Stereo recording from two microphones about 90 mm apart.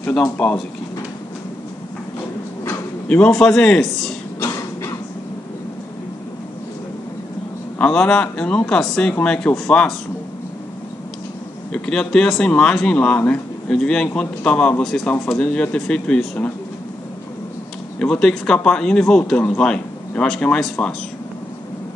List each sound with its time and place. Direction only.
0.1 s speech: 10° left (ahead or behind)
3.1 s speech: 10° left (ahead or behind)
4.5 s a sound: 40° left (ahead or behind)
7.8 s speech: 10° left (ahead or behind)
11.7 s speech: 10° left (ahead or behind)
17.9 s speech: 10° left (ahead or behind)